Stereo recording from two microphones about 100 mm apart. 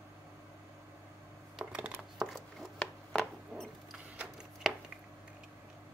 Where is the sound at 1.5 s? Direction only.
10° right (ahead or behind); by 3.7 s 10° left (ahead or behind).